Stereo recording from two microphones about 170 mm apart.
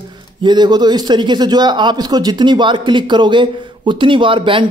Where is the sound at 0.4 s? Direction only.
25° right (ahead or behind).